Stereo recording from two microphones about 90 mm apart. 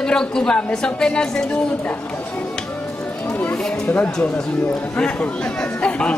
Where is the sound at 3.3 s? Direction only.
20° left (ahead or behind).